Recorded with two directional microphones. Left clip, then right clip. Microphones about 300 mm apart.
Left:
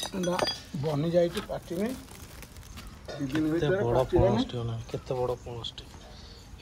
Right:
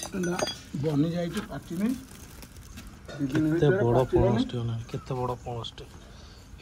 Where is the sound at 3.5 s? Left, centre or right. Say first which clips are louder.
Right 3 dB; centre.